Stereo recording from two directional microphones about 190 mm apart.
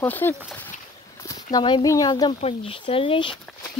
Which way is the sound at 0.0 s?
10° left (ahead or behind).